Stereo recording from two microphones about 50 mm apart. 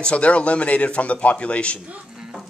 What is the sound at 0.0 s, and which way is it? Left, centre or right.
Speech, left.